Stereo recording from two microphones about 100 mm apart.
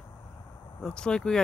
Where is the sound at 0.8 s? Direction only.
10° left (ahead or behind).